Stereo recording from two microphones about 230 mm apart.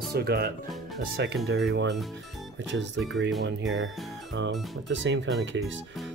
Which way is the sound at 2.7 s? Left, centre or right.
Right.